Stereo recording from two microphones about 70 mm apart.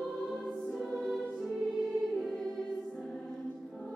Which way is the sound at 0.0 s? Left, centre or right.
Centre.